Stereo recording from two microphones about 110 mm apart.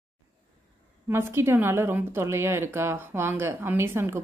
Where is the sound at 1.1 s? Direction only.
20° right (ahead or behind).